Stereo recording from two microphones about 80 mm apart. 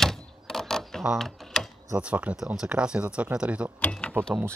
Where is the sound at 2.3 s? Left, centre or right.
Centre.